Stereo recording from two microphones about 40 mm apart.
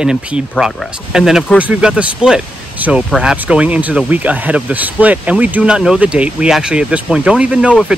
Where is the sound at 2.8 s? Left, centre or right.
Right.